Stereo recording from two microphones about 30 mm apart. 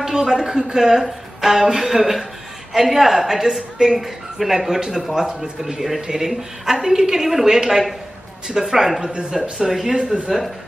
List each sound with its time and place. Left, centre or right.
0.0 s a woman's voice: centre
3.2 s a woman's voice: centre
4.7 s a woman's voice: right
9.3 s speech: centre
9.8 s a woman's voice: centre